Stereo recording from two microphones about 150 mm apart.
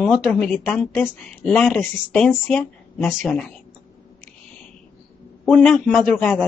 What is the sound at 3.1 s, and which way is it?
Speech, 5° right (ahead or behind).